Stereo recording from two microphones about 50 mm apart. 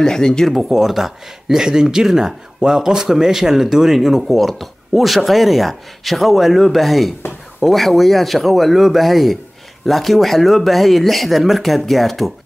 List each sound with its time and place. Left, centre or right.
0.0 s speech: centre
0.6 s speech: centre